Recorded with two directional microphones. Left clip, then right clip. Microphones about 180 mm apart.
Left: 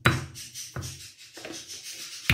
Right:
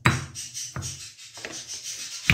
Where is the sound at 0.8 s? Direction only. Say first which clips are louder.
Right 1 dB; 20° left (ahead or behind).